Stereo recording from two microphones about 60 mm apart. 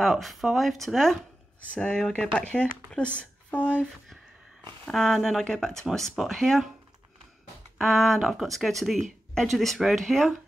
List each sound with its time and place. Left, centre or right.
0.0 s speech: centre
1.8 s speech: centre
4.9 s speech: centre
7.7 s speech: centre